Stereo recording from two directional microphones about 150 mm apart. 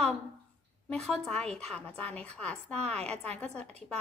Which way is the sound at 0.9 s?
5° left (ahead or behind).